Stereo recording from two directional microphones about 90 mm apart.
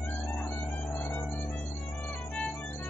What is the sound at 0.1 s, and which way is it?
Music, 20° left (ahead or behind).